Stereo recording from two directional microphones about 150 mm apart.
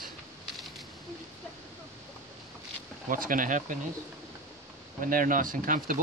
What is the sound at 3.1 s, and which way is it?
Speech, 65° right (ahead or behind).